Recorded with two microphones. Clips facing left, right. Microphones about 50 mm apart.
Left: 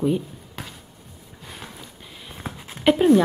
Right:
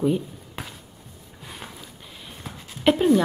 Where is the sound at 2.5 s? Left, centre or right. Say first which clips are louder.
Left 5 dB; left.